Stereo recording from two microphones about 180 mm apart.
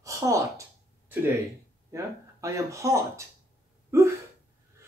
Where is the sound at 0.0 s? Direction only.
20° right (ahead or behind).